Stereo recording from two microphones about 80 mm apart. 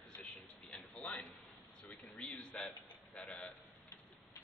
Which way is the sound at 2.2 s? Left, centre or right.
Centre.